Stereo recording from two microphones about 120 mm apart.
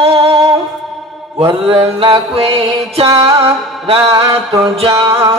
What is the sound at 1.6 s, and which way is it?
Carnatic music, 50° right (ahead or behind).